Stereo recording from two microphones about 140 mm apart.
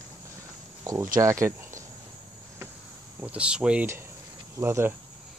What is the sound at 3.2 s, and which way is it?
Speech, 10° right (ahead or behind).